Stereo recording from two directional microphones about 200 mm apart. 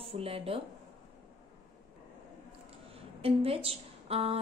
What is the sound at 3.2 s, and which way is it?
A woman's voice, 30° right (ahead or behind).